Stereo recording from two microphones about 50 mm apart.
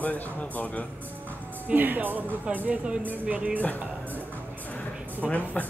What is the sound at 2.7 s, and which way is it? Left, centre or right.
Speech, right.